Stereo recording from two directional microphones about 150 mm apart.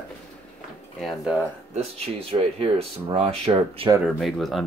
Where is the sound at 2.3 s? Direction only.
40° right (ahead or behind).